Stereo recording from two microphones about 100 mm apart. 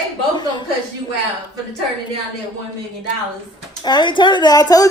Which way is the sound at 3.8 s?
50° left (ahead or behind).